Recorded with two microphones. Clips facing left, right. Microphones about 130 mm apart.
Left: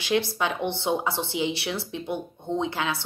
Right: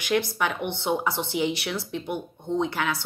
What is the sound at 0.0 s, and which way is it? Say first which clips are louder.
Speech: even; 25° left (ahead or behind).